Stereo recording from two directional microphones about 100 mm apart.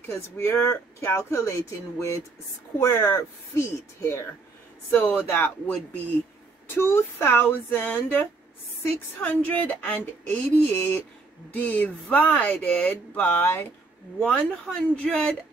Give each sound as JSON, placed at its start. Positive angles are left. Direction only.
{"t": 0.0, "sound": "speech", "side_deg": 25}
{"t": 6.7, "sound": "speech", "side_deg": 25}
{"t": 14.2, "sound": "speech", "side_deg": 10}